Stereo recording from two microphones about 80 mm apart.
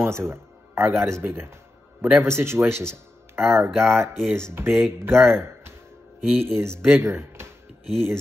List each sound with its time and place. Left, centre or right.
0.0 s speech: right